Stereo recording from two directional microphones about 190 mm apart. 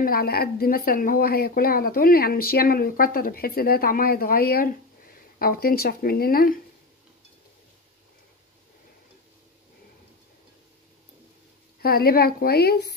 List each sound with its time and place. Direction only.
0.0 s speech: 50° left (ahead or behind)
11.8 s speech: 55° left (ahead or behind)